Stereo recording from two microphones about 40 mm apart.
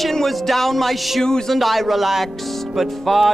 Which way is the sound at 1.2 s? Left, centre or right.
Centre.